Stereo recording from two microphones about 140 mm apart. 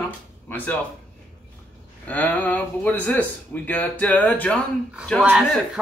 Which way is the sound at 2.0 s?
10° left (ahead or behind).